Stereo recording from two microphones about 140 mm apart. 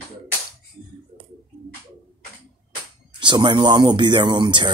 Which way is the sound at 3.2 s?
35° right (ahead or behind).